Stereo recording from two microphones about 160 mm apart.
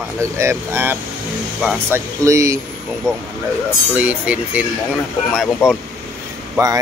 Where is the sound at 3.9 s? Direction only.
10° right (ahead or behind).